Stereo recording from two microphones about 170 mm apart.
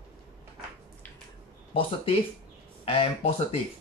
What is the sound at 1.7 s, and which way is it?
Speech, 30° left (ahead or behind).